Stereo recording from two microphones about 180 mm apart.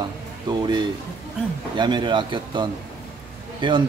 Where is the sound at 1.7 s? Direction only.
25° right (ahead or behind).